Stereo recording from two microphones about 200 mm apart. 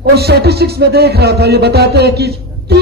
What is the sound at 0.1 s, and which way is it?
A man's voice, 55° right (ahead or behind).